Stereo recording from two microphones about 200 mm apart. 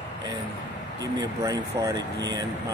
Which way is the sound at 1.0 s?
15° right (ahead or behind).